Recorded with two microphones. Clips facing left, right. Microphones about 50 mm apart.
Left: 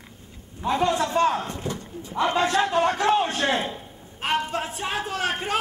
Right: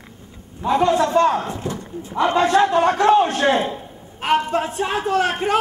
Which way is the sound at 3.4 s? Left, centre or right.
Centre.